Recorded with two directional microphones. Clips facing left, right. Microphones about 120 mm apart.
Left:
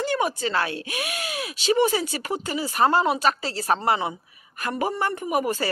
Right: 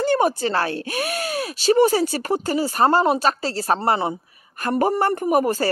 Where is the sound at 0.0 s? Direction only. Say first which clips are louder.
Right 6 dB; 35° right (ahead or behind).